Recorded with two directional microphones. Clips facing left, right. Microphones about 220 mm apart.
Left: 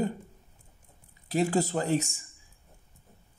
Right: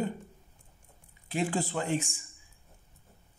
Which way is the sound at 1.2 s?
40° left (ahead or behind).